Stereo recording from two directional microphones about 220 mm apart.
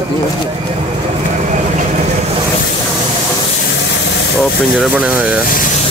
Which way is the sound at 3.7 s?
55° left (ahead or behind).